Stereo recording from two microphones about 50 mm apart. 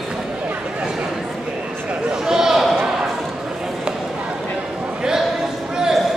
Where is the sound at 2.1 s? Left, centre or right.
Centre.